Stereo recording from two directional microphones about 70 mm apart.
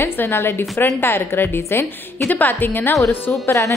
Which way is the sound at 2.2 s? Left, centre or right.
Left.